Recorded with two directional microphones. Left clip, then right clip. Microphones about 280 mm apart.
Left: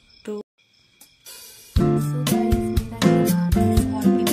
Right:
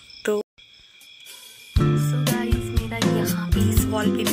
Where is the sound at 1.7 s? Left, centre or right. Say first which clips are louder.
Left 2 dB; centre.